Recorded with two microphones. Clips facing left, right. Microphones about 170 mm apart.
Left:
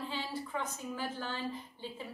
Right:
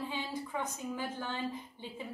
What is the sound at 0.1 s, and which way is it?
A woman's voice, 15° right (ahead or behind).